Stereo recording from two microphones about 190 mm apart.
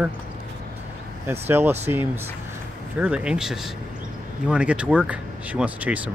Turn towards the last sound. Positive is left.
turn(degrees=-10)  # may be behind; listen again after turning